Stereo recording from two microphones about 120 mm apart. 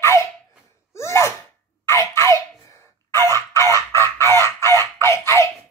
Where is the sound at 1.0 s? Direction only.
25° left (ahead or behind).